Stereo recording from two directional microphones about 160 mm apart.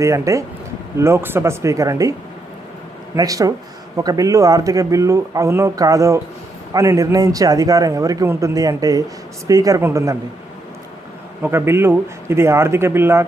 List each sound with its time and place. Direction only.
0.0 s a man's voice: 20° right (ahead or behind)
3.2 s speech: 20° right (ahead or behind)
11.4 s a man's voice: 15° right (ahead or behind)